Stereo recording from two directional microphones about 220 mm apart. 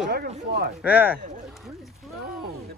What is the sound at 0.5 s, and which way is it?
Speech, 45° right (ahead or behind).